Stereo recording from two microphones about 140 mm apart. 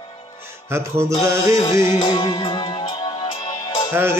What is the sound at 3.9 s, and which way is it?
Music, 15° right (ahead or behind).